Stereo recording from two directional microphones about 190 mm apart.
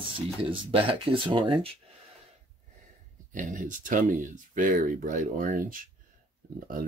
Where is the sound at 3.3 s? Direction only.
45° right (ahead or behind).